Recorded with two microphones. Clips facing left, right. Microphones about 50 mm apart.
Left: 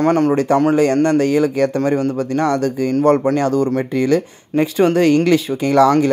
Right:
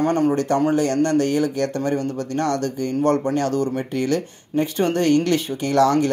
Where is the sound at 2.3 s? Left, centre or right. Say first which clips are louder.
Left 4 dB; left.